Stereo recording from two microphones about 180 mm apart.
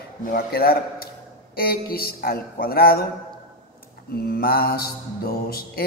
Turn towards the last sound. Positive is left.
turn(degrees=55)  # may be behind; listen again after turning